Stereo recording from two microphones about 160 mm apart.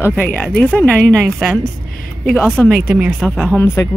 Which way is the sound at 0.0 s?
10° left (ahead or behind).